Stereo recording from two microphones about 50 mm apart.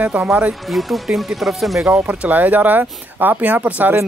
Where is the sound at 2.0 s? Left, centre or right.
Right.